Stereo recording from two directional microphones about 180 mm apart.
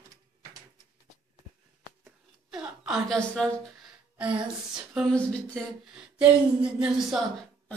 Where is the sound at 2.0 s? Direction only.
5° right (ahead or behind).